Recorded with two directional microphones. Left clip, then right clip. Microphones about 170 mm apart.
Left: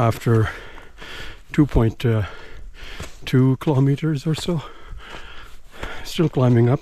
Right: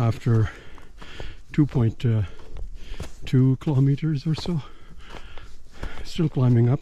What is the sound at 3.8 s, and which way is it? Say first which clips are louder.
Speech: left 4 dB; 20° right (ahead or behind).